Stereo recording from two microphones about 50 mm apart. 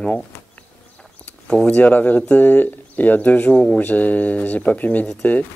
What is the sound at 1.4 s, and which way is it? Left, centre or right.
Speech, centre.